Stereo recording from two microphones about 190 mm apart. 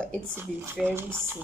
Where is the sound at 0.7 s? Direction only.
10° right (ahead or behind).